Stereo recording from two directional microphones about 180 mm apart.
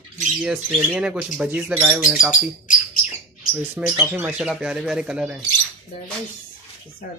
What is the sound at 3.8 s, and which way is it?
Speech, 10° right (ahead or behind).